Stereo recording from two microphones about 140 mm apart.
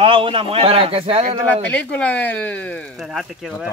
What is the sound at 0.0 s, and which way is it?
Speech, 40° right (ahead or behind).